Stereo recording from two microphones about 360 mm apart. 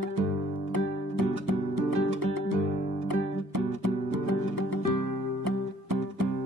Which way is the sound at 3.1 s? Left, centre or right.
Right.